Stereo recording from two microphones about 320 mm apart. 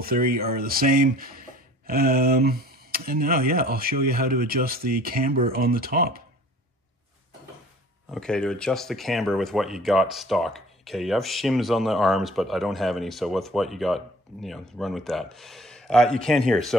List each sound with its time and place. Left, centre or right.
0.0 s speech: right
8.1 s speech: centre